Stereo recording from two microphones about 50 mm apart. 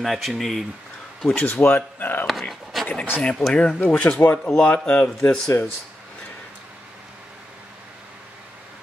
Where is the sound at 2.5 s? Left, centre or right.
Centre.